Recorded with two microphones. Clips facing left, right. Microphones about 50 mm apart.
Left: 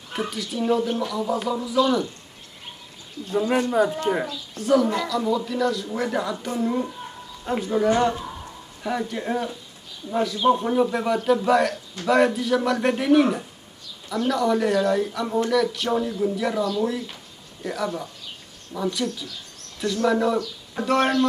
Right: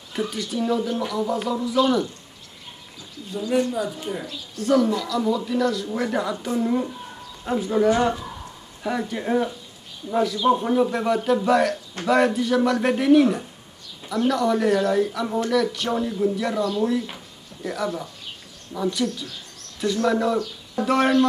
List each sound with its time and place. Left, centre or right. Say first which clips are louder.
0.3 s speech: left 2 dB; centre
3.3 s a woman's voice: left 1 dB; left
4.6 s speech: even; centre
17.6 s speech: even; centre